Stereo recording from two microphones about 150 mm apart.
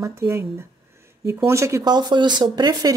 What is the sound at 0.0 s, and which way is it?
Speech, 15° right (ahead or behind).